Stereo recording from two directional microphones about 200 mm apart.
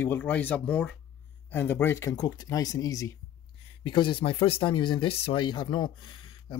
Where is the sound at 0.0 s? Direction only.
10° left (ahead or behind).